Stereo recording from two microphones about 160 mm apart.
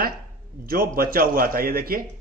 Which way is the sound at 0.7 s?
65° right (ahead or behind).